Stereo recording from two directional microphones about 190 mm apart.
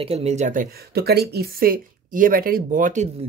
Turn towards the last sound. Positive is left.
turn(degrees=-45)  # may be behind; listen again after turning